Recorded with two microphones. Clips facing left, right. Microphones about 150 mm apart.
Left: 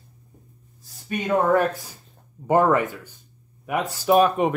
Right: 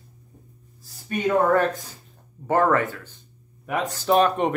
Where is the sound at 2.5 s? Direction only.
15° left (ahead or behind).